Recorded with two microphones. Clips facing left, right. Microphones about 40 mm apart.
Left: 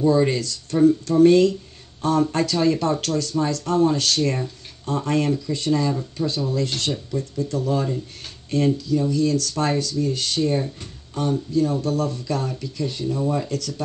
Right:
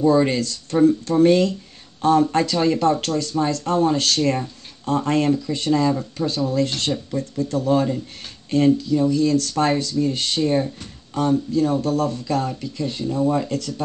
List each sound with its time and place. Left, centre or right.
0.3 s speech: right
6.1 s speech: right